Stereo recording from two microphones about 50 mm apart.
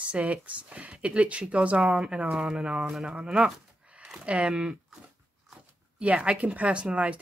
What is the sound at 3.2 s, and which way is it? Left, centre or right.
Speech, centre.